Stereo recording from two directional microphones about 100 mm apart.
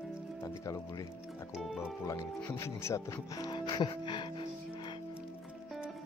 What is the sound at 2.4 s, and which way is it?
Speech, 25° left (ahead or behind).